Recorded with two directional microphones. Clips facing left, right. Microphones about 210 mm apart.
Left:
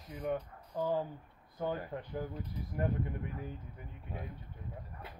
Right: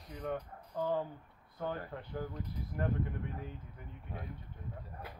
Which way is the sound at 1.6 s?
15° left (ahead or behind).